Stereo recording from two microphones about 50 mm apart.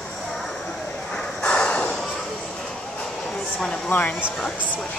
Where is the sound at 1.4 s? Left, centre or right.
Centre.